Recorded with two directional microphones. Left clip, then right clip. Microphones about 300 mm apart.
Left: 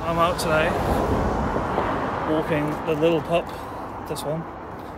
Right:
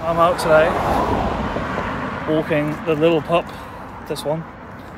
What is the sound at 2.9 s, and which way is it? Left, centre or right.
Speech, centre.